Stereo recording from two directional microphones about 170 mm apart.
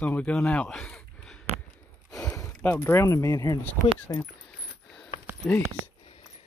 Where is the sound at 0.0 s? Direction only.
10° left (ahead or behind); by 4.2 s 25° left (ahead or behind).